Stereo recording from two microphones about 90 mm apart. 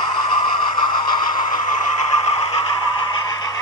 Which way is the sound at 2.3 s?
90° left.